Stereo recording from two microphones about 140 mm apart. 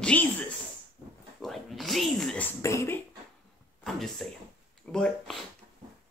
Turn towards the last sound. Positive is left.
turn(degrees=5)  # may be behind; listen again after turning